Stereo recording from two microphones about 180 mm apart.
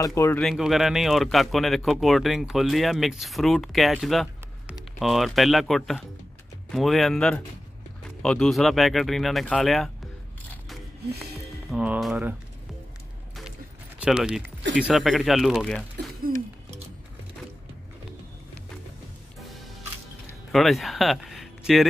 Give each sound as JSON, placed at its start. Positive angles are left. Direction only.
{"t": 0.0, "sound": "speech", "side_deg": 15}
{"t": 0.4, "sound": "speech", "side_deg": 0}
{"t": 11.7, "sound": "speech", "side_deg": -5}
{"t": 13.9, "sound": "speech", "side_deg": -5}
{"t": 20.5, "sound": "speech", "side_deg": 0}